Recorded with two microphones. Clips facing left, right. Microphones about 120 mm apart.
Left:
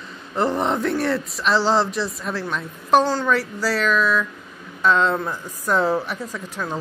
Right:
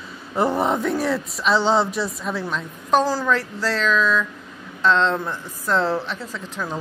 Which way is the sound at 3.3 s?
10° left (ahead or behind).